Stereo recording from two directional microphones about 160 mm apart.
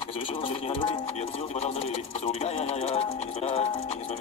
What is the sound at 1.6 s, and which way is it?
Music, 40° left (ahead or behind).